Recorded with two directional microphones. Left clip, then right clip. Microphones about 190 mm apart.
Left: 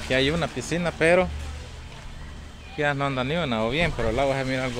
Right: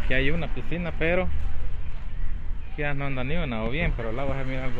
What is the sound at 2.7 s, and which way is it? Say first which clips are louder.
Speech: left 6 dB; 20° left (ahead or behind).